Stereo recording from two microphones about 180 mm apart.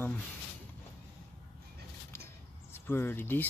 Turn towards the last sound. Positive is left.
turn(degrees=10)  # may be behind; listen again after turning